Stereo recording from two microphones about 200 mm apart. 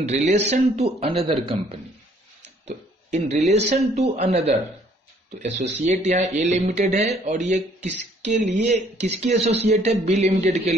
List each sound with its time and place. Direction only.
0.0 s a man's voice: 35° right (ahead or behind)
5.8 s a man's voice: 35° right (ahead or behind)